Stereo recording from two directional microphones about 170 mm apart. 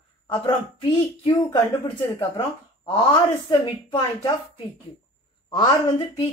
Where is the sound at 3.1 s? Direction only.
30° left (ahead or behind).